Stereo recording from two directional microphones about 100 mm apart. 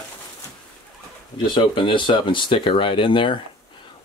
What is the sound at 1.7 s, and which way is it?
Speech, 55° left (ahead or behind).